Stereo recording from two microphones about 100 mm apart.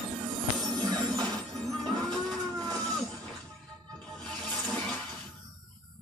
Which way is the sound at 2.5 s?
40° right (ahead or behind).